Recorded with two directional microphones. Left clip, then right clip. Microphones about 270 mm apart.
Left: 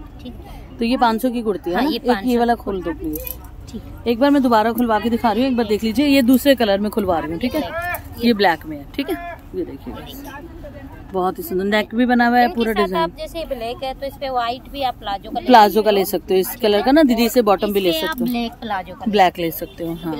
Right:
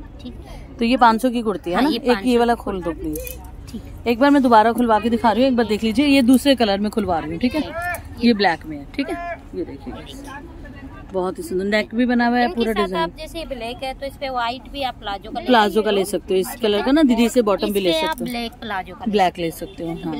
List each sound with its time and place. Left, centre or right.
0.7 s speech: centre
2.2 s speech: centre
4.0 s speech: centre
17.9 s speech: centre